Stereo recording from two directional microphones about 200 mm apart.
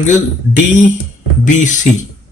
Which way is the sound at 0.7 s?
40° left (ahead or behind).